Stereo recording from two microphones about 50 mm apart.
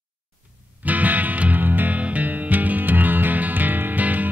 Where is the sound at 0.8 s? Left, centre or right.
Right.